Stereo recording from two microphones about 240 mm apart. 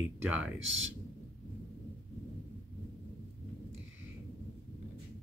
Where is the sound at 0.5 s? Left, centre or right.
Right.